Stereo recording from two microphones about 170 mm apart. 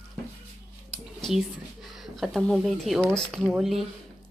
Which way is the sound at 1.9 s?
Centre (ahead or behind).